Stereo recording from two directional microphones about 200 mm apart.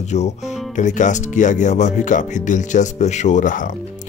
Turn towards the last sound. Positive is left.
turn(degrees=40)  # may be behind; listen again after turning